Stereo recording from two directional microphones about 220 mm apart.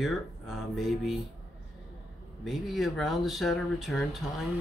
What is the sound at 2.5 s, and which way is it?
Speech, centre (ahead or behind).